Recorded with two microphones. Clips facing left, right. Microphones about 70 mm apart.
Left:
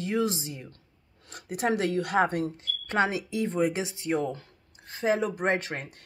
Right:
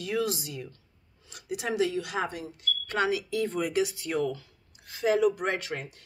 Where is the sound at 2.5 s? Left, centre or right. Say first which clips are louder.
Left 2 dB; left.